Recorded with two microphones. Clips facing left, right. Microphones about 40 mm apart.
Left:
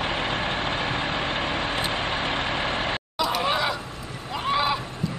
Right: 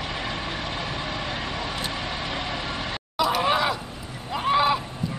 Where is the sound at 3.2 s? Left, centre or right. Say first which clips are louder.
Right 3 dB; centre.